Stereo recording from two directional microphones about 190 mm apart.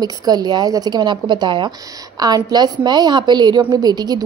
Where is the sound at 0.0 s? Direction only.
20° right (ahead or behind).